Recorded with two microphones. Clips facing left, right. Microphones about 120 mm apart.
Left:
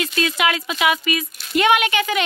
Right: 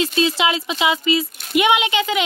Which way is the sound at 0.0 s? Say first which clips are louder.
Right 2 dB; 25° right (ahead or behind).